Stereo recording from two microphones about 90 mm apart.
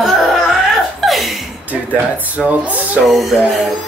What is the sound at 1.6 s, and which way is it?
Speech, 20° right (ahead or behind).